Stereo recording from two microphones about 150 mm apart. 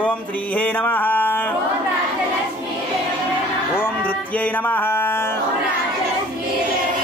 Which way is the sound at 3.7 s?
10° left (ahead or behind).